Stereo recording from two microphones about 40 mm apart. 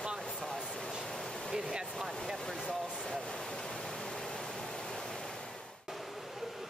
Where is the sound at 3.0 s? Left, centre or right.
Centre.